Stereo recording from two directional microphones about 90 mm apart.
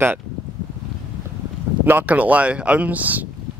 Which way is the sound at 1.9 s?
20° right (ahead or behind).